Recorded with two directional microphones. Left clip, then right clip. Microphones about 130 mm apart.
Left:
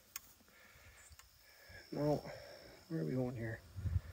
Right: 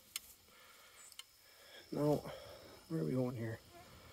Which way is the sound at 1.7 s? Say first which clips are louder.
Right 1 dB; 25° right (ahead or behind).